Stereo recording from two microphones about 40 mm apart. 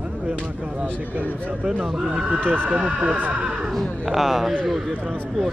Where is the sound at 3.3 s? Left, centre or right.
Right.